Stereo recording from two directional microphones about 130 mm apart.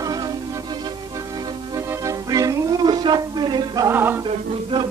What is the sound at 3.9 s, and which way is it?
Music, 15° right (ahead or behind).